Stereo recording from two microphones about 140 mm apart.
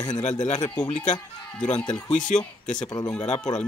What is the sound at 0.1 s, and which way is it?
Speech, 60° left (ahead or behind).